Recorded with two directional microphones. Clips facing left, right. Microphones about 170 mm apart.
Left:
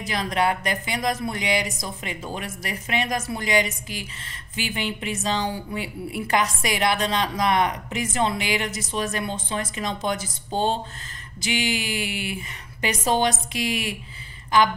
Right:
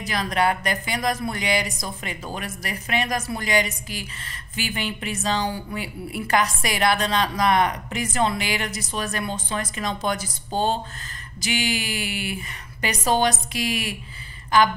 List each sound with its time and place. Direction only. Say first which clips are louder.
0.0 s a woman's voice: right 1 dB; 25° left (ahead or behind)
11.4 s a woman's voice: even; 25° left (ahead or behind)